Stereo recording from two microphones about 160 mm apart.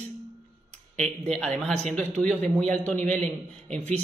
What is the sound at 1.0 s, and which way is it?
Speech, 5° left (ahead or behind).